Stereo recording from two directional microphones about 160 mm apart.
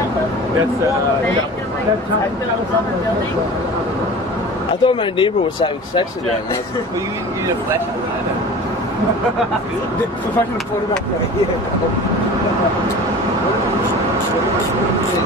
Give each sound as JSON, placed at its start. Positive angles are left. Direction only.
{"t": 4.8, "sound": "speech", "side_deg": 30}